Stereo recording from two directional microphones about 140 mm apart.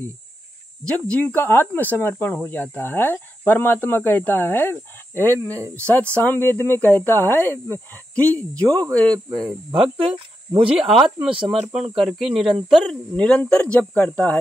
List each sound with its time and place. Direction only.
0.8 s speech: 10° left (ahead or behind)
9.9 s speech: 40° right (ahead or behind)
10.8 s speech: centre (ahead or behind)
11.3 s speech: 40° right (ahead or behind)
12.0 s speech: centre (ahead or behind)